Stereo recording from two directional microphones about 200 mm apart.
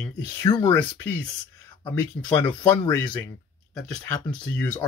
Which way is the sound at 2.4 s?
10° left (ahead or behind).